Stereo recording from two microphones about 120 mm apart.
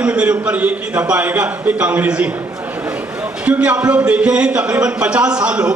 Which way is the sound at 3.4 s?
10° right (ahead or behind).